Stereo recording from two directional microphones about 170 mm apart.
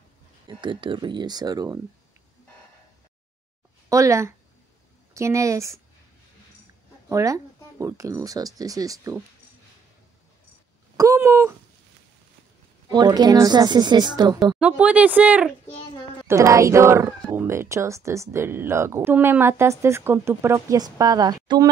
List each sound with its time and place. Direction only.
0.5 s speech: 30° right (ahead or behind)
3.9 s speech: 15° right (ahead or behind)
7.1 s speech: 20° right (ahead or behind)
11.0 s a sound: 15° right (ahead or behind)
12.9 s speech: 25° right (ahead or behind)
14.6 s speech: 5° right (ahead or behind); by 21.6 s 25° right (ahead or behind)